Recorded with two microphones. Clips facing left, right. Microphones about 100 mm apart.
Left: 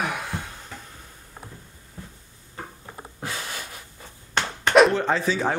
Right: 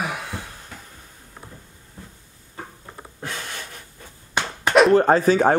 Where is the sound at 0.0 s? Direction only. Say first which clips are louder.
Even; centre (ahead or behind).